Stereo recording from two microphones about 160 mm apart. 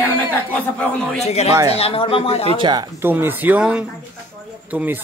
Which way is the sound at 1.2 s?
40° left (ahead or behind).